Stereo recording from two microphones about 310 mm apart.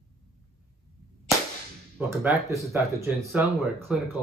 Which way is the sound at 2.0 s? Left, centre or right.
Centre.